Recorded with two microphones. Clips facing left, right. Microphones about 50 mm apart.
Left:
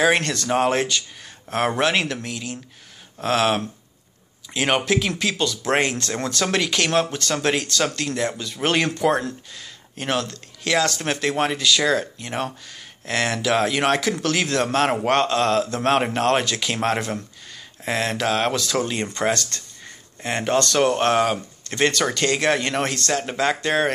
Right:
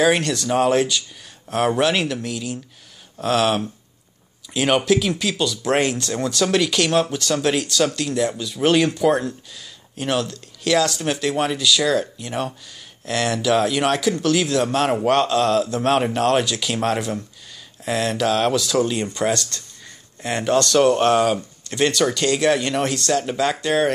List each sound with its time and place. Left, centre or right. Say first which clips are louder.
0.2 s speech: right 3 dB; left
0.5 s speech: right 2 dB; left
1.8 s speech: right 1 dB; left
6.4 s speech: right 3 dB; left
14.2 s speech: right 3 dB; left
17.8 s speech: right 2 dB; left
18.5 s speech: right 4 dB; left